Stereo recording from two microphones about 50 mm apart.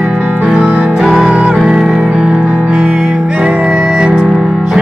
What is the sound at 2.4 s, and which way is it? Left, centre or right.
Music, right.